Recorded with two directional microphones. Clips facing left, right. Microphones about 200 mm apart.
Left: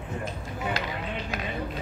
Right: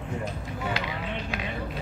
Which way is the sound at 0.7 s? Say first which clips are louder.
Even; 45° left (ahead or behind).